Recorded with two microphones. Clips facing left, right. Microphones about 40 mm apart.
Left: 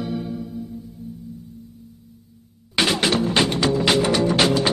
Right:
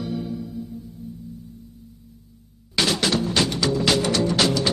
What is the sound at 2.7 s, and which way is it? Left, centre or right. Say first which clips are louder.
Music: left 2 dB; left.